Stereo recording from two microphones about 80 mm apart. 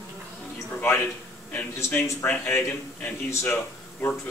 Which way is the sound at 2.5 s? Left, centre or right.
Left.